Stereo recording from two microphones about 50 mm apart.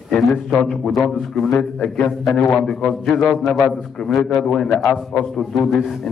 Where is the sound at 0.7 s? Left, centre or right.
Centre.